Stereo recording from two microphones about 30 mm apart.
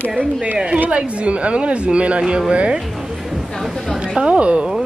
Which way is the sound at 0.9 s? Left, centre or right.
Right.